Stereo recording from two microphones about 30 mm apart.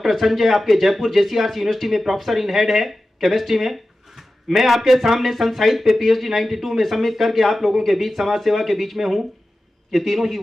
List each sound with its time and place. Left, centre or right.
0.0 s speech: centre